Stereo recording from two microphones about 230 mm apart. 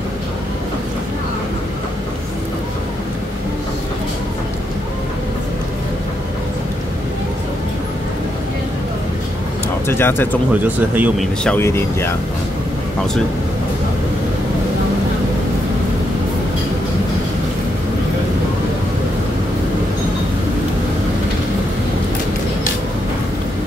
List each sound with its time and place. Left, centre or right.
9.8 s speech: centre
10.5 s speech: centre
11.4 s speech: centre